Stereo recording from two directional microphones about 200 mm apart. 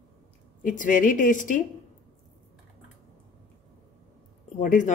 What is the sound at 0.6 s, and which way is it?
Speech, 40° left (ahead or behind).